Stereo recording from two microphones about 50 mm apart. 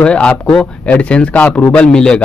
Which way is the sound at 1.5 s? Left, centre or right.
Left.